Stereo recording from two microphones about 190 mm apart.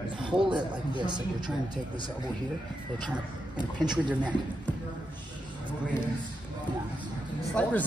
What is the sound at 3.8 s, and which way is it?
Speech, 25° right (ahead or behind).